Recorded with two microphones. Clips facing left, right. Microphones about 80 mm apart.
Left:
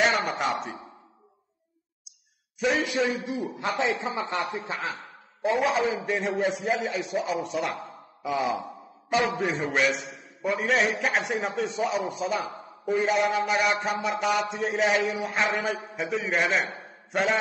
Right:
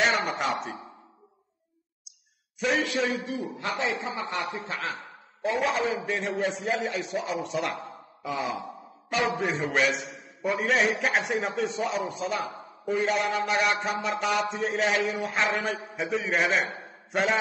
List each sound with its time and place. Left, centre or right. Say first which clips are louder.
0.0 s speech: left 1 dB; centre
2.6 s a man's voice: left 1 dB; centre
3.3 s speech: left 2 dB; left
5.8 s a man's voice: left 2 dB; centre